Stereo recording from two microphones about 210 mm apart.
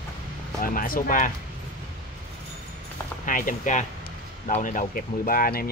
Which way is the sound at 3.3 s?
40° left (ahead or behind).